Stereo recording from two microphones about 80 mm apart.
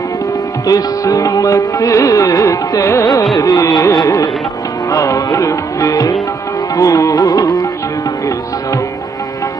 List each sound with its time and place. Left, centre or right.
0.7 s music: left